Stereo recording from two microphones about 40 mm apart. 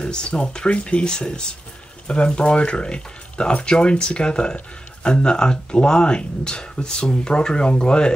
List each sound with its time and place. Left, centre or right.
0.0 s speech: left